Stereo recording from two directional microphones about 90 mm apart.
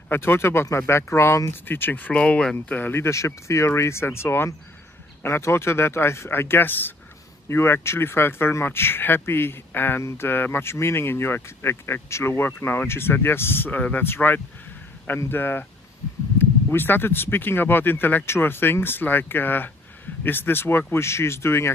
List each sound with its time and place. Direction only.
0.1 s speech: 25° left (ahead or behind)
2.5 s speech: 25° left (ahead or behind)